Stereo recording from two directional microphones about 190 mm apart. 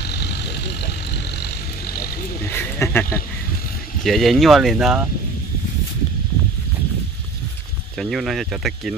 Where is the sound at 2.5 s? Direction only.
10° left (ahead or behind).